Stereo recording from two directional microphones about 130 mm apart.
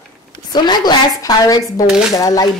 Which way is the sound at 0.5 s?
35° left (ahead or behind).